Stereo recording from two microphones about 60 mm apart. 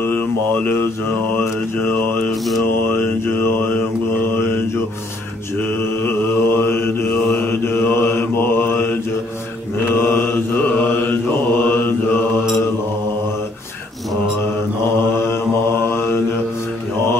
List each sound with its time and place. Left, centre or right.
1.8 s mantra: left
6.0 s mantra: left
9.9 s mantra: left
15.7 s mantra: left